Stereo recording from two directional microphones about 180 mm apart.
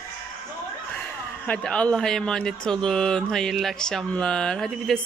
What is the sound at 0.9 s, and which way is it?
Speech, 5° left (ahead or behind).